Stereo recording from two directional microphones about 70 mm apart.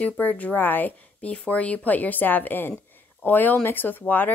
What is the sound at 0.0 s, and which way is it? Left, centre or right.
A woman's voice, left.